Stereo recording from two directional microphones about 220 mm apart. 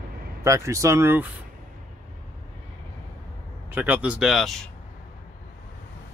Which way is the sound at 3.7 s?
5° right (ahead or behind).